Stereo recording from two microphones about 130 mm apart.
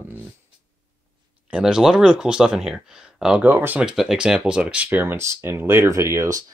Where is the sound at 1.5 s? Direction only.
5° right (ahead or behind).